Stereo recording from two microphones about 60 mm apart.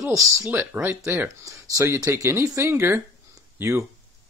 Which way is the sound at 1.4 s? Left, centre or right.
Right.